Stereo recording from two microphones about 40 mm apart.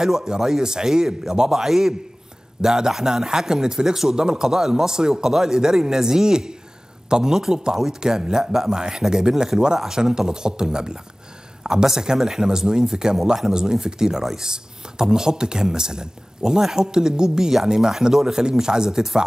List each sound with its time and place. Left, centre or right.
0.0 s speech: centre